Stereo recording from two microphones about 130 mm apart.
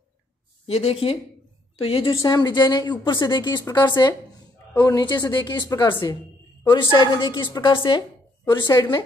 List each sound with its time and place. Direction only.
0.7 s speech: 50° left (ahead or behind)
2.1 s a woman's voice: 30° left (ahead or behind)